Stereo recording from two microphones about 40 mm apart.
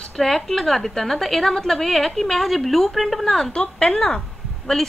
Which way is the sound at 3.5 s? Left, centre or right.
Left.